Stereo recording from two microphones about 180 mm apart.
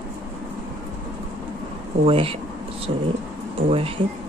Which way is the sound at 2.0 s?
30° right (ahead or behind).